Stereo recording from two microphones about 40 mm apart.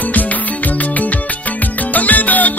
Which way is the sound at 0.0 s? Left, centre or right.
Left.